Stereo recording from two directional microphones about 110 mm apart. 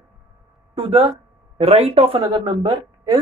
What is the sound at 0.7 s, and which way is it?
Speech, 55° right (ahead or behind).